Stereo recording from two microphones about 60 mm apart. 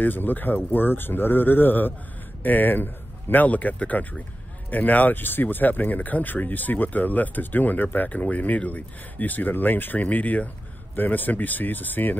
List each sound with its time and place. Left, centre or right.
0.0 s speech: left